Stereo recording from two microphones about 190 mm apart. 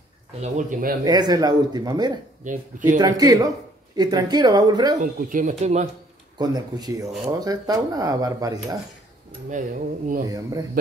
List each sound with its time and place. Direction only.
0.4 s cutlery: 40° right (ahead or behind)
1.0 s speech: 20° right (ahead or behind)
2.4 s cutlery: 45° right (ahead or behind)
3.0 s speech: 20° right (ahead or behind)
5.0 s speech: 45° right (ahead or behind)
6.3 s speech: 20° right (ahead or behind)
9.5 s cutlery: 45° right (ahead or behind)
10.2 s speech: 20° right (ahead or behind)